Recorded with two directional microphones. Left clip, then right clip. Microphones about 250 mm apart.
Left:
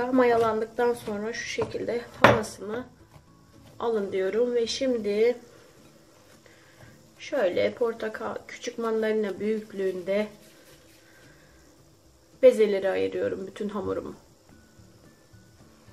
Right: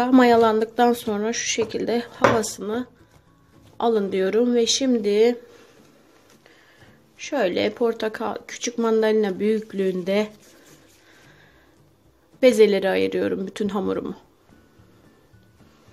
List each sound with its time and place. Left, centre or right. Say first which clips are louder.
0.0 s speech: right 6 dB; right
7.2 s speech: right 3 dB; right
12.4 s speech: right 3 dB; right